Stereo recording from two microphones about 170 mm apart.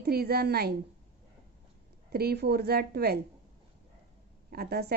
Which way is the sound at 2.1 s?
70° right (ahead or behind).